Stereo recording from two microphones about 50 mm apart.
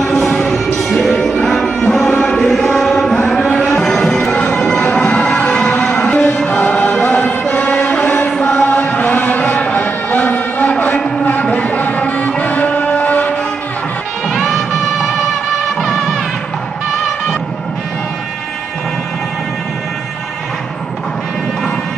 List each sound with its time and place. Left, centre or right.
0.0 s music: centre
2.3 s chant: centre
3.8 s music: centre
4.7 s music: left
6.0 s music: left
6.7 s chant: left
7.1 s music: left
10.7 s a sound: left
14.3 s music: centre